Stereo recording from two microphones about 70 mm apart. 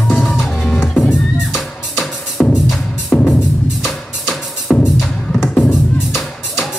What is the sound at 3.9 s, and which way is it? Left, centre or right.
Music, centre.